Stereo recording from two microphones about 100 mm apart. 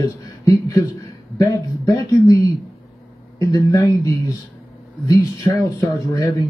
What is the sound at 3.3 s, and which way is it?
Speech, 40° left (ahead or behind).